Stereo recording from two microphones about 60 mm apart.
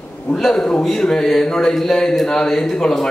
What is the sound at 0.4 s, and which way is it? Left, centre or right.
A man's voice, centre.